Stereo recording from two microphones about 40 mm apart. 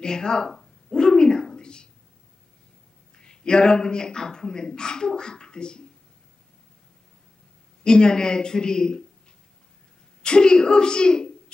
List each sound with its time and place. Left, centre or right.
0.0 s a sound: centre
3.2 s a man's voice: left
7.8 s a man's voice: centre
10.2 s a woman's voice: left